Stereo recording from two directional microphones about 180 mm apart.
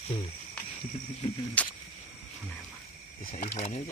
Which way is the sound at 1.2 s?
30° left (ahead or behind).